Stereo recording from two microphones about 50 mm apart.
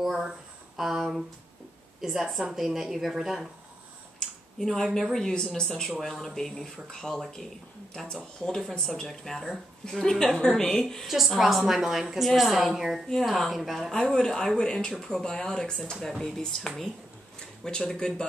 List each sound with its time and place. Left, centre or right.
0.0 s a woman's voice: centre
4.2 s a sound: centre
5.1 s speech: centre
5.9 s speech: centre
11.1 s a woman's voice: centre
13.9 s speech: centre
17.6 s speech: centre